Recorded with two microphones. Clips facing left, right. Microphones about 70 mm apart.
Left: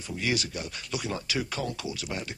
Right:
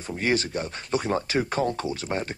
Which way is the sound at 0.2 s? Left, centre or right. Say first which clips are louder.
Right 5 dB; right.